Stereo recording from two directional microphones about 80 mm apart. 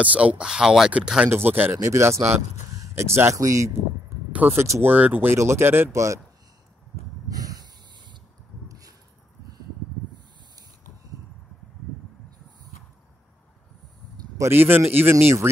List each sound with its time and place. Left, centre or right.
0.0 s speech: centre
1.3 s speech: right
1.8 s a man's voice: right
4.3 s a sound: right
4.6 s speech: right
4.8 s speech: right
5.3 s speech: right
7.2 s snort: right
8.6 s a sound: right
14.4 s speech: right